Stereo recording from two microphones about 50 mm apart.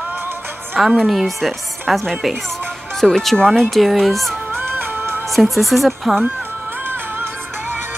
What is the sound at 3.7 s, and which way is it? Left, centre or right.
Speech, centre.